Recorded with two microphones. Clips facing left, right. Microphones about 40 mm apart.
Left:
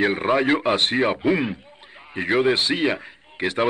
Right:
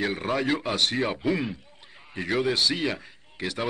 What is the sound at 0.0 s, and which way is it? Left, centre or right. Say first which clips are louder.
Speech: left 7 dB; left.